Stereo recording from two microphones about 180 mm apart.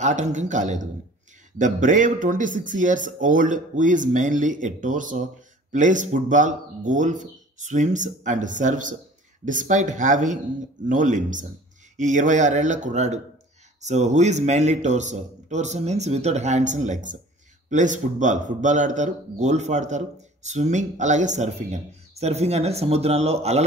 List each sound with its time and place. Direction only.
0.0 s a man's voice: 40° right (ahead or behind)